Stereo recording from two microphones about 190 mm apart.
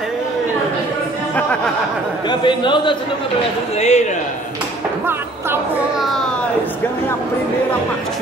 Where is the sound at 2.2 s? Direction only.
25° left (ahead or behind).